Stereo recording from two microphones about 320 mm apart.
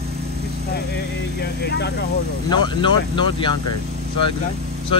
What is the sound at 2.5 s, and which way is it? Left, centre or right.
Speech, centre.